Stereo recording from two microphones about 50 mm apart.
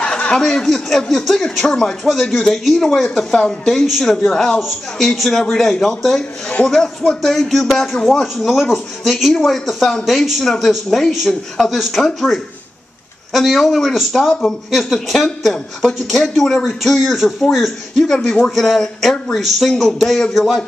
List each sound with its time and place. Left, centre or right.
0.0 s snicker: centre
0.4 s speech: centre
3.7 s speech: centre